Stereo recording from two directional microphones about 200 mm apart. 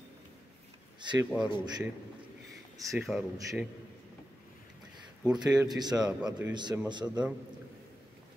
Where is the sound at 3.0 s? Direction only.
5° right (ahead or behind).